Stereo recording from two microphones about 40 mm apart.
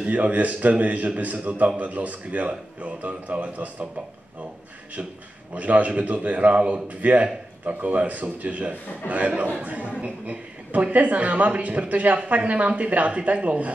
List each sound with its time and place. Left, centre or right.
0.0 s a woman's voice: right
5.0 s a woman's voice: right